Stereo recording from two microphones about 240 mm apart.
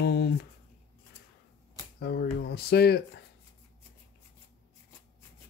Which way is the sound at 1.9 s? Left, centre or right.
Left.